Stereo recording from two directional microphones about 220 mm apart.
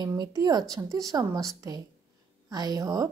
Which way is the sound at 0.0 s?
15° right (ahead or behind).